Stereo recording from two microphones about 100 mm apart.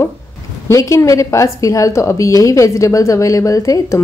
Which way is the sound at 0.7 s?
30° left (ahead or behind).